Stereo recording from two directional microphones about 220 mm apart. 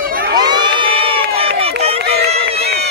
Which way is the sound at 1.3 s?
25° right (ahead or behind).